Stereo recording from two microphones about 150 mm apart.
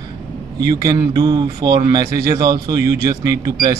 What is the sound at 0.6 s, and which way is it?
Speech, 25° right (ahead or behind).